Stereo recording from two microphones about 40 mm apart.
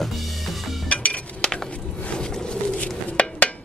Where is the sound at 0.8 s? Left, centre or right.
Left.